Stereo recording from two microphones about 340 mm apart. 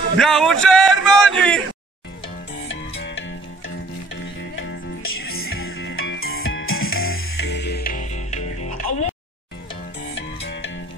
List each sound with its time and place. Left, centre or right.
0.2 s speech: centre
2.7 s music: left
10.1 s music: left